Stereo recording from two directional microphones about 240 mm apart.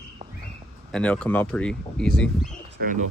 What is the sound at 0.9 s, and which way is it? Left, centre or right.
Speech, centre.